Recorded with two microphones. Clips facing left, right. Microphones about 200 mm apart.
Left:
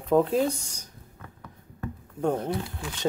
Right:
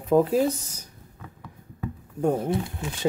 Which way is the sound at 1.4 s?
5° right (ahead or behind).